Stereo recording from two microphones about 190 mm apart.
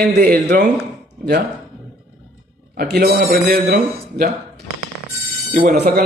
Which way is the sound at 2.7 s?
55° right (ahead or behind).